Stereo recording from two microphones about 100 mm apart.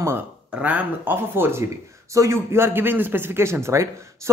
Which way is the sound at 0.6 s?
15° right (ahead or behind).